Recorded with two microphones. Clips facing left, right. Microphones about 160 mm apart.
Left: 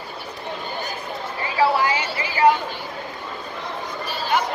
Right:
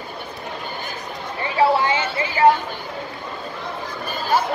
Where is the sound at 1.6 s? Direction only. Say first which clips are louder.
Right 2 dB; 25° right (ahead or behind).